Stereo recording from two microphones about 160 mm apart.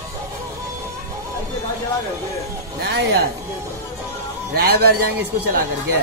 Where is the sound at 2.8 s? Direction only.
90° right.